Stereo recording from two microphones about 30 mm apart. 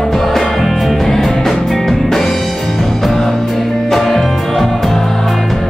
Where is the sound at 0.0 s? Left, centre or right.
Centre.